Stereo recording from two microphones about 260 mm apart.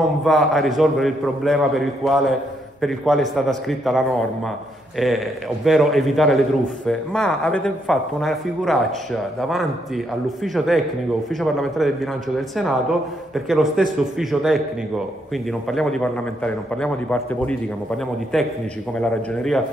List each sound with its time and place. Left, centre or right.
0.2 s speech: centre
13.3 s speech: centre
18.9 s speech: centre